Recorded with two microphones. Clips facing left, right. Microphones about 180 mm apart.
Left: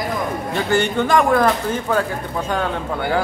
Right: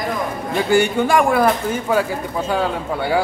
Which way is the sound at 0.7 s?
10° right (ahead or behind).